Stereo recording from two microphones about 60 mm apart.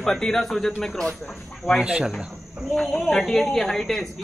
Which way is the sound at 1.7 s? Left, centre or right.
Centre.